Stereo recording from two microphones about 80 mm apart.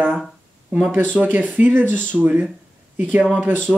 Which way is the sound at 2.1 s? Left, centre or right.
Centre.